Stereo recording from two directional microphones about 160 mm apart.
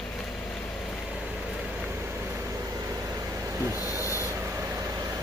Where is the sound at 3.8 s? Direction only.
20° left (ahead or behind).